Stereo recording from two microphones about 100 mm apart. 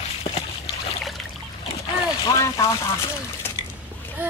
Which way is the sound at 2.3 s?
30° left (ahead or behind).